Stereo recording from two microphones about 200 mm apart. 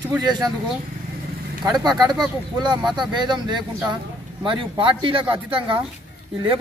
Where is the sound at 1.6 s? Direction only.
20° right (ahead or behind).